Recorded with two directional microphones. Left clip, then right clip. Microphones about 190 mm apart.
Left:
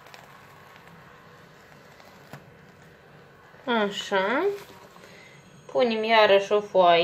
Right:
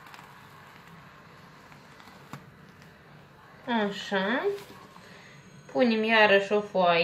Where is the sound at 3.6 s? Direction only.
50° left (ahead or behind).